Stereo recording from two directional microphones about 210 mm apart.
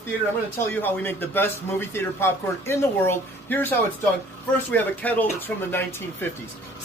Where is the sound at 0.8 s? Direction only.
10° left (ahead or behind).